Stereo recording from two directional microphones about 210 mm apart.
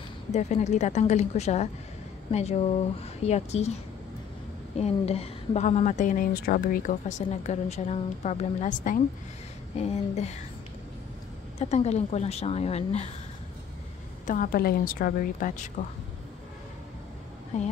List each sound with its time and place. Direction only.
0.3 s a woman's voice: 35° left (ahead or behind)
3.2 s a woman's voice: 30° left (ahead or behind)
11.5 s a woman's voice: 30° left (ahead or behind)
14.2 s a woman's voice: 40° left (ahead or behind)
17.5 s a woman's voice: 35° left (ahead or behind)